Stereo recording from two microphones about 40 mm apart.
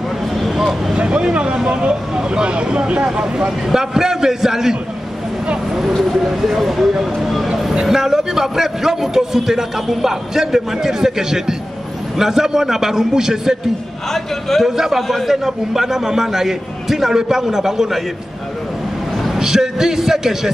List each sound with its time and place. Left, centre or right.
0.4 s vehicle: centre
0.9 s a man's voice: right
6.0 s a man's voice: centre
14.1 s a man's voice: centre
15.4 s a man's voice: centre
19.2 s a man's voice: centre